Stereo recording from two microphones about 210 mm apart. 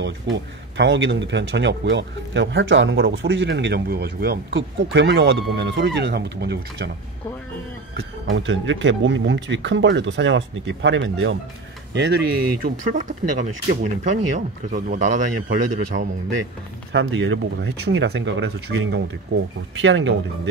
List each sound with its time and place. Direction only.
0.0 s speech: 60° right (ahead or behind)
8.3 s speech: 60° right (ahead or behind)
11.9 s a man's voice: 50° right (ahead or behind)
15.9 s speech: 55° right (ahead or behind)
17.8 s speech: 55° right (ahead or behind)